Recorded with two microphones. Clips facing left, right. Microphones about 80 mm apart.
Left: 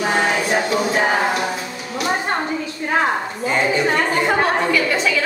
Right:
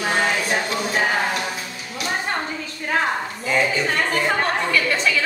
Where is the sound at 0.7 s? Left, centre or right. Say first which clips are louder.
Left 4 dB; left.